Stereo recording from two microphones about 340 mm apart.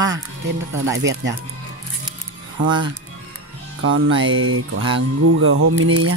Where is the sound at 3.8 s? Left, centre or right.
Right.